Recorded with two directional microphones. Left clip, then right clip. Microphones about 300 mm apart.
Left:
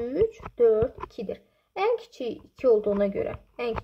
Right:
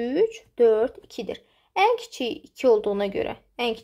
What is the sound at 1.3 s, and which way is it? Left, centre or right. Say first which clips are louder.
A woman's voice: right 2 dB; centre.